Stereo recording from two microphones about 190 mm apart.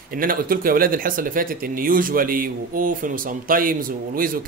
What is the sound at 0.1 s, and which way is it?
Speech, 50° right (ahead or behind).